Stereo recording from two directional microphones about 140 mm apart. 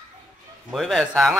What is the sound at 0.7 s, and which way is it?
Speech, centre (ahead or behind).